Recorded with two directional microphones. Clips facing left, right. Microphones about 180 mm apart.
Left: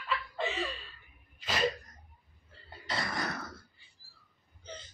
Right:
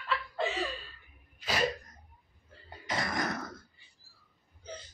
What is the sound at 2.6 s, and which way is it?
Cough, 15° right (ahead or behind).